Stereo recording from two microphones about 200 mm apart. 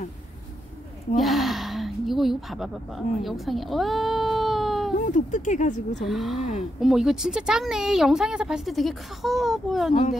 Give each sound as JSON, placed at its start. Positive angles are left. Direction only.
{"t": 1.1, "sound": "speech", "side_deg": 0}
{"t": 4.9, "sound": "speech", "side_deg": 40}
{"t": 6.0, "sound": "a woman's voice", "side_deg": 0}